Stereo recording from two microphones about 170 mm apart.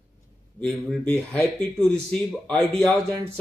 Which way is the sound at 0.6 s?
5° left (ahead or behind).